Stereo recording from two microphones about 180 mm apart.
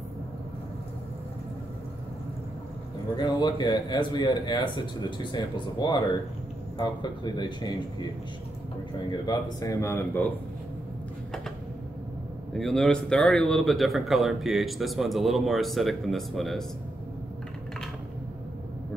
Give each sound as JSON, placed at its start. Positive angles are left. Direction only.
{"t": 3.2, "sound": "speech", "side_deg": 25}
{"t": 9.1, "sound": "speech", "side_deg": 20}
{"t": 12.5, "sound": "speech", "side_deg": 0}